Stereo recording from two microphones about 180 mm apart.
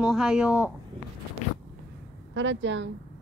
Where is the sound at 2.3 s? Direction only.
90° right.